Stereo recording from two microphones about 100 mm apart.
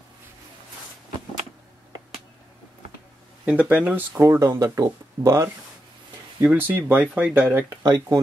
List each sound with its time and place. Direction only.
3.4 s speech: 15° right (ahead or behind)
4.2 s speech: 30° right (ahead or behind)
6.4 s speech: 20° right (ahead or behind)
7.8 s speech: 40° right (ahead or behind)